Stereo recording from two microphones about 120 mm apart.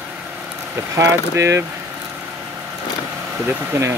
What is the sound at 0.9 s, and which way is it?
Speech, 25° right (ahead or behind).